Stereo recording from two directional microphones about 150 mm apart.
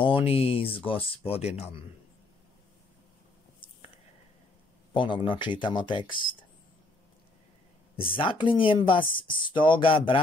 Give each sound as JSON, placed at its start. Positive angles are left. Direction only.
{"t": 0.0, "sound": "a man's voice", "side_deg": 35}
{"t": 4.9, "sound": "speech", "side_deg": 30}
{"t": 7.9, "sound": "speech", "side_deg": 35}